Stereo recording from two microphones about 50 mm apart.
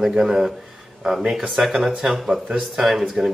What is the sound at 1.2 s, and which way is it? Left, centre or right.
Speech, centre.